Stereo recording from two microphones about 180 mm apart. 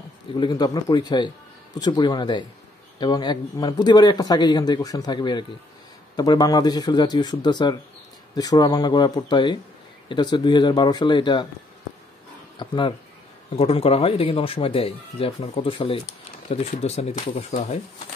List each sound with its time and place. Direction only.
0.3 s speech: 25° left (ahead or behind)
12.5 s speech: 25° left (ahead or behind)